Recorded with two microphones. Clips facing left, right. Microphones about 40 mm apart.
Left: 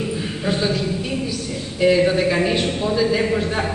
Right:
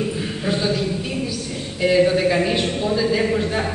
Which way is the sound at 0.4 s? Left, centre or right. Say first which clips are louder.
Even; centre.